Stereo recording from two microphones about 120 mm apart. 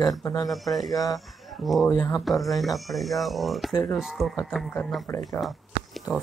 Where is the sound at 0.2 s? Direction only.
25° left (ahead or behind).